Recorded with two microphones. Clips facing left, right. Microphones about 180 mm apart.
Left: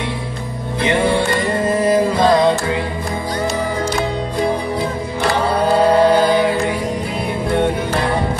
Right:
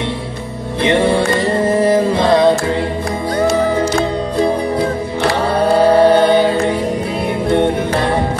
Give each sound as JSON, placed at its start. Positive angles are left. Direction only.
{"t": 0.8, "sound": "music", "side_deg": -30}
{"t": 5.7, "sound": "music", "side_deg": -30}